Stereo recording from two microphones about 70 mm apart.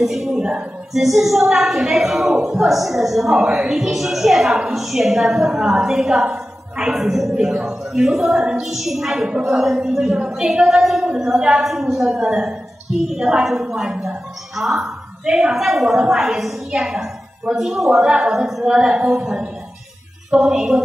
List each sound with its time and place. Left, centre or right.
0.0 s a woman's voice: centre